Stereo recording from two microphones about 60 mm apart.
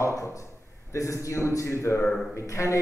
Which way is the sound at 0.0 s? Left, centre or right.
Left.